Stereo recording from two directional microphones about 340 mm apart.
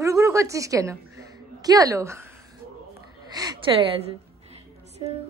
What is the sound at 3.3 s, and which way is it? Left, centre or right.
Speech, centre.